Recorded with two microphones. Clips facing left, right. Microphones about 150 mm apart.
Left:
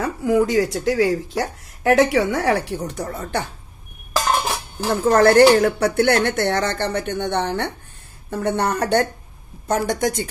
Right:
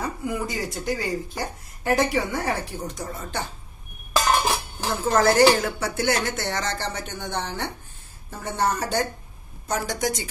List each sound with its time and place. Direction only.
0.0 s speech: 90° left; by 3.4 s 60° left (ahead or behind)
5.0 s speech: 60° left (ahead or behind)